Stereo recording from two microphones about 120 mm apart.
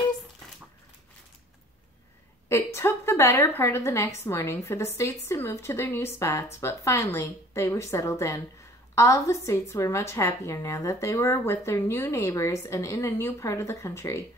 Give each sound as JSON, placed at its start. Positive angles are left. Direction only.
{"t": 2.5, "sound": "a woman's voice", "side_deg": 20}